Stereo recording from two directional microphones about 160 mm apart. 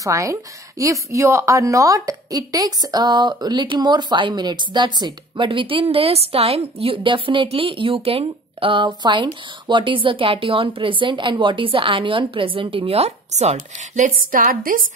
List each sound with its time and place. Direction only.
0.0 s a woman's voice: 20° right (ahead or behind); by 14.8 s 65° right (ahead or behind)